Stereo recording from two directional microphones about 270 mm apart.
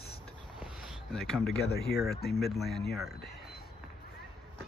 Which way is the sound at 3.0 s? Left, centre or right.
Centre.